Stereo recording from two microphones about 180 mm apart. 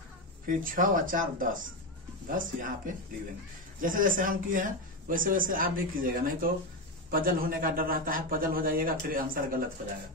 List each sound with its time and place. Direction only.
0.5 s speech: 50° right (ahead or behind)
3.8 s speech: 50° right (ahead or behind)